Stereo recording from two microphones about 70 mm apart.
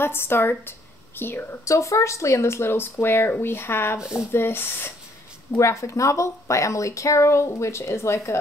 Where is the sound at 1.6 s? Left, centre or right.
Left.